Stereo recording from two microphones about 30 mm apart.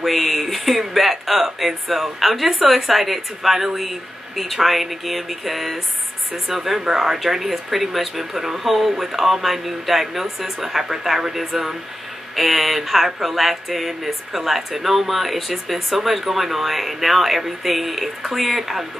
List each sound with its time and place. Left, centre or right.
0.0 s speech: centre
6.8 s speech: centre
7.2 s speech: centre